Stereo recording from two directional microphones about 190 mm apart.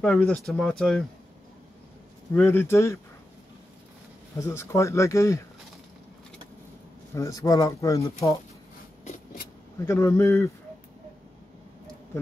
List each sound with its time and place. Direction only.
0.0 s speech: 5° left (ahead or behind)
2.3 s speech: 10° left (ahead or behind)
4.4 s speech: 15° left (ahead or behind)
7.2 s speech: 20° left (ahead or behind)
9.0 s a sound: 50° left (ahead or behind)
9.8 s speech: 15° left (ahead or behind)